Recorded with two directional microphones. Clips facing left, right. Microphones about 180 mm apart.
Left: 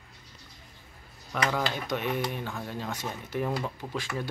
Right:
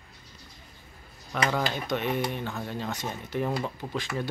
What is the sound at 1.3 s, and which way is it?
Speech, 5° left (ahead or behind).